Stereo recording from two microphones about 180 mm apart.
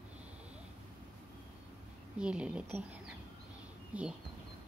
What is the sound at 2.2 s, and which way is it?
Speech, 5° right (ahead or behind).